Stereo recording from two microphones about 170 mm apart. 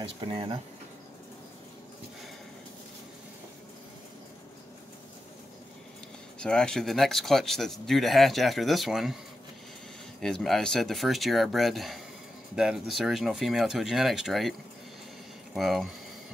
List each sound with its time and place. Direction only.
0.2 s speech: 30° right (ahead or behind)
6.4 s speech: 5° left (ahead or behind)
10.2 s speech: centre (ahead or behind)
15.5 s speech: centre (ahead or behind)